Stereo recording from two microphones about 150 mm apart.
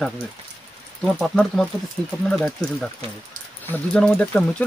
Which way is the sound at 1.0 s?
5° left (ahead or behind).